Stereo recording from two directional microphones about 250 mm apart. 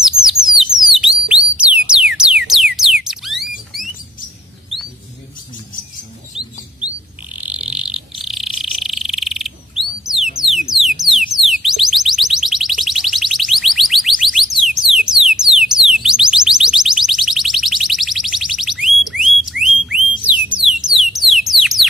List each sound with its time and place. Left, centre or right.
0.2 s bird: centre
1.0 s music: centre
6.3 s bird: centre
10.4 s alarm: centre